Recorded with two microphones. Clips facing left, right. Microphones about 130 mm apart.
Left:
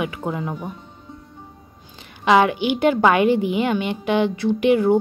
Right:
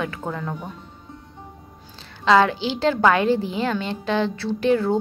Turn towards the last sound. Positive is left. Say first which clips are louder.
# left 4 dB
turn(degrees=15)  # may be behind; listen again after turning